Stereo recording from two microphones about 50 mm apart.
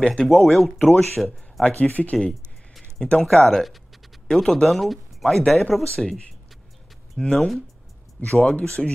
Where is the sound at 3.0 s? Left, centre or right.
Centre.